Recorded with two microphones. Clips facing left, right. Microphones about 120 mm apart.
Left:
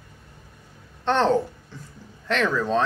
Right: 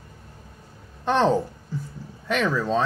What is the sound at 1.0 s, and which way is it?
A child's voice, 10° right (ahead or behind).